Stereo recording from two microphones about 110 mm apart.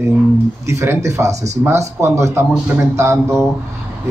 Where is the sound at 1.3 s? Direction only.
90° right.